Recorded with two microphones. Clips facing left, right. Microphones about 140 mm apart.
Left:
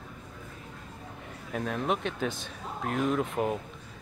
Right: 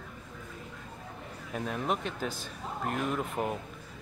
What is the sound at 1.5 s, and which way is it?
Speech, centre (ahead or behind).